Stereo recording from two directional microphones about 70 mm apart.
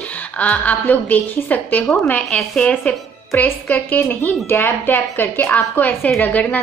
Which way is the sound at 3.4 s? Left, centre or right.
Left.